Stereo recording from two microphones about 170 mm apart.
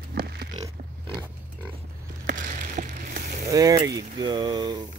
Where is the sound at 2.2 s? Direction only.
50° right (ahead or behind).